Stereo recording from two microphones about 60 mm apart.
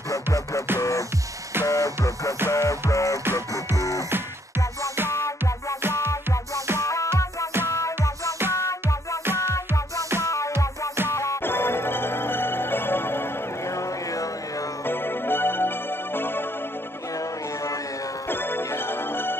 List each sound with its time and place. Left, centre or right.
0.1 s music: left
5.1 s music: left
6.8 s music: left
10.2 s music: left
11.4 s music: left
14.9 s music: left
18.3 s music: left